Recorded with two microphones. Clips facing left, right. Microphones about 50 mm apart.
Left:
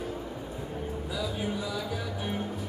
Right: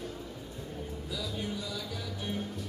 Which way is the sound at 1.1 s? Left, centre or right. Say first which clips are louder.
Left 4 dB; centre.